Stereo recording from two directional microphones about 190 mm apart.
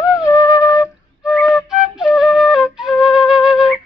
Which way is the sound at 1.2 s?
Centre (ahead or behind).